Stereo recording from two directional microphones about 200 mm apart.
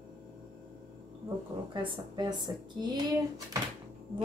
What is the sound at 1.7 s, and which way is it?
A woman's voice, 25° right (ahead or behind).